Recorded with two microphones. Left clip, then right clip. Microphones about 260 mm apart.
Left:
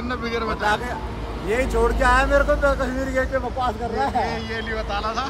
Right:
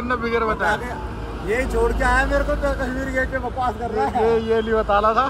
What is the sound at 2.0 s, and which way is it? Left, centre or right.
A man's voice, centre.